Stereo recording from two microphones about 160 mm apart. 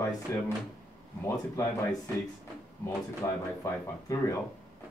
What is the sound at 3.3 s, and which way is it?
Speech, 15° left (ahead or behind).